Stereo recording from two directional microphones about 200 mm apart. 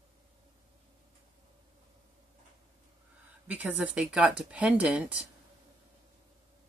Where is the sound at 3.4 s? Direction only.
5° right (ahead or behind).